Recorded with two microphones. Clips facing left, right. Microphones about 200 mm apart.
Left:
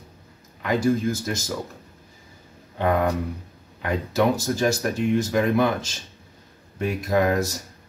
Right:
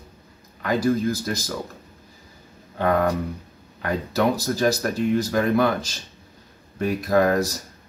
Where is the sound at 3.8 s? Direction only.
20° left (ahead or behind).